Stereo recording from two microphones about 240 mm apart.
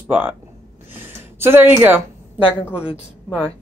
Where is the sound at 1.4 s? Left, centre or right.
Centre.